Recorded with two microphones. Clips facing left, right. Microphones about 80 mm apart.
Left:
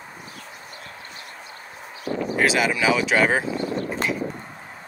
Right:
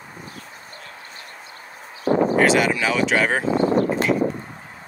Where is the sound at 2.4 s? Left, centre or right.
Centre.